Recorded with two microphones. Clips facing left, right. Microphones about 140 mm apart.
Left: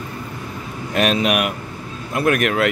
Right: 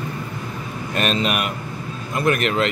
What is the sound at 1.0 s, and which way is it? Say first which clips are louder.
Speech: left 4 dB; 10° left (ahead or behind).